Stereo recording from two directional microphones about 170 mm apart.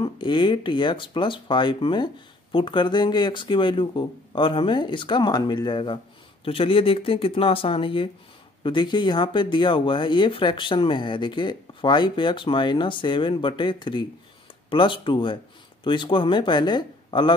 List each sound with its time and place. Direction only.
0.0 s speech: 30° left (ahead or behind)